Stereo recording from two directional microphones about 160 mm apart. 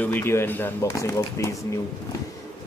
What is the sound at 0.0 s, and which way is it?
A man's voice, 15° left (ahead or behind).